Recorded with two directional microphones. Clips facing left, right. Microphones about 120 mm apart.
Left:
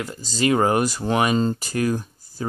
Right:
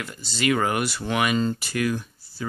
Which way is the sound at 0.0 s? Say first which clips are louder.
Left 3 dB; 40° left (ahead or behind).